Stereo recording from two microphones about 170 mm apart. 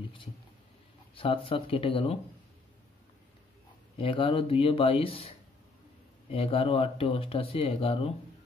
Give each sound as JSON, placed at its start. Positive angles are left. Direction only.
{"t": 1.1, "sound": "speech", "side_deg": 30}
{"t": 4.0, "sound": "speech", "side_deg": 30}
{"t": 6.3, "sound": "speech", "side_deg": 35}